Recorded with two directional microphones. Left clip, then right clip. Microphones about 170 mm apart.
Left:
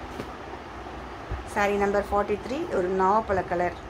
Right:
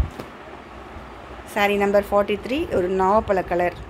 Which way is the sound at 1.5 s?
40° right (ahead or behind).